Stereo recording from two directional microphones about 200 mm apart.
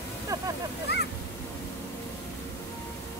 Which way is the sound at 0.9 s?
55° left (ahead or behind).